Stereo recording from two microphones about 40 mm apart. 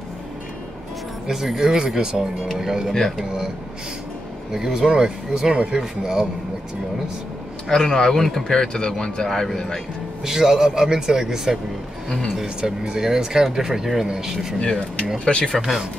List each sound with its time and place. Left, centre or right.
1.2 s speech: centre
4.5 s speech: centre
7.6 s speech: centre
10.2 s speech: centre
14.6 s speech: left
15.5 s speech: centre